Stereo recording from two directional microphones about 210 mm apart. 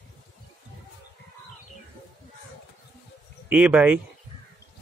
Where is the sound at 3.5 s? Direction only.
5° right (ahead or behind).